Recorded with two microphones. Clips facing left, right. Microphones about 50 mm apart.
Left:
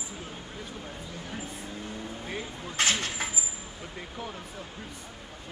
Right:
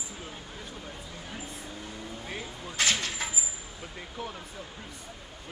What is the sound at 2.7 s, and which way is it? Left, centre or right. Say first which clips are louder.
Speech: left 1 dB; left.